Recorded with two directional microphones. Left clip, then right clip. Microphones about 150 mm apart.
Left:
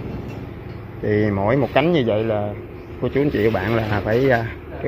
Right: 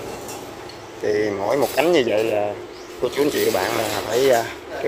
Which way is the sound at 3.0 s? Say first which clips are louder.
Even; 50° right (ahead or behind).